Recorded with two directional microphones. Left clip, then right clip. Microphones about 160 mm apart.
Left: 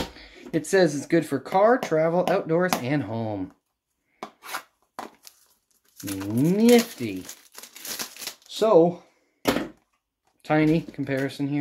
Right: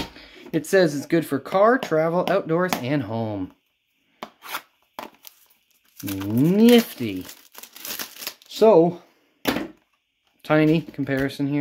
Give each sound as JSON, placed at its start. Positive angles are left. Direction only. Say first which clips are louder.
{"t": 0.1, "sound": "speech", "louder": "right 1 dB", "side_deg": -30}
{"t": 4.2, "sound": "chopping", "louder": "right 2 dB", "side_deg": 0}
{"t": 4.6, "sound": "a sound", "louder": "even", "side_deg": -20}
{"t": 6.4, "sound": "crumpling", "louder": "right 2 dB", "side_deg": -30}
{"t": 8.5, "sound": "speech", "louder": "right 3 dB", "side_deg": -65}
{"t": 10.4, "sound": "speech", "louder": "right 3 dB", "side_deg": -30}